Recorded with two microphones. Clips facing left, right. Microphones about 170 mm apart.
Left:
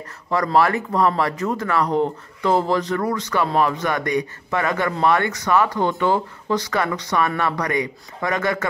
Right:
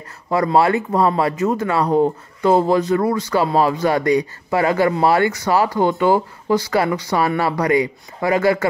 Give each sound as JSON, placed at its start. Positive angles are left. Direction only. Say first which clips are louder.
{"t": 0.3, "sound": "speech", "louder": "right 3 dB", "side_deg": -25}
{"t": 5.8, "sound": "speech", "louder": "right 4 dB", "side_deg": -15}
{"t": 6.5, "sound": "speech", "louder": "right 4 dB", "side_deg": -30}